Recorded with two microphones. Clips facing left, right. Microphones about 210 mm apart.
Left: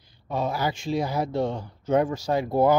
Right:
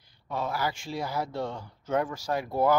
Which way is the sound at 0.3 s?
20° left (ahead or behind).